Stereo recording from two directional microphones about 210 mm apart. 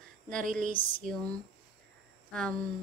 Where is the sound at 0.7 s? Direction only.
25° left (ahead or behind).